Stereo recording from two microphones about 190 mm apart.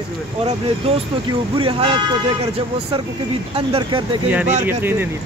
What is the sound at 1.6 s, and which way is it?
Speech, 30° right (ahead or behind).